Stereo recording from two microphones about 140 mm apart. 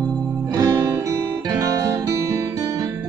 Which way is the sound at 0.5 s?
25° right (ahead or behind).